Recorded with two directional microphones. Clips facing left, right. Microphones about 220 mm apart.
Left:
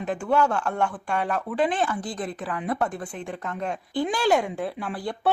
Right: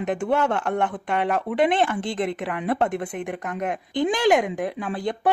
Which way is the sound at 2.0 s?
25° right (ahead or behind).